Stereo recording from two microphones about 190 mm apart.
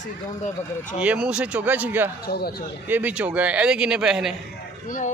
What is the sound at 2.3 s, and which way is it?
Speech, 55° left (ahead or behind).